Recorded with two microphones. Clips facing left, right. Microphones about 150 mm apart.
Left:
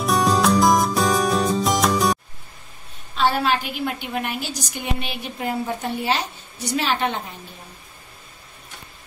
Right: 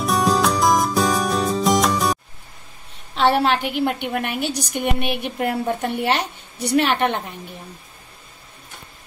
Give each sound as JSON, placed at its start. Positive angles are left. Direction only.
{"t": 0.0, "sound": "music", "side_deg": 0}
{"t": 3.2, "sound": "a woman's voice", "side_deg": -65}